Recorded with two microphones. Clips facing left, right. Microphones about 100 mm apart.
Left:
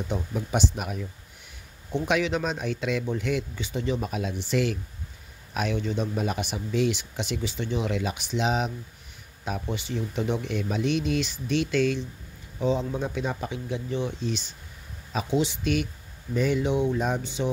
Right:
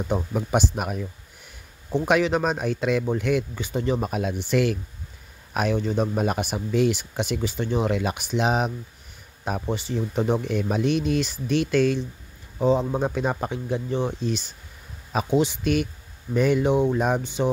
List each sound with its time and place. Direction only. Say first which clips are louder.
0.1 s speech: right 5 dB; 50° right (ahead or behind)
2.0 s speech: right 5 dB; 45° right (ahead or behind)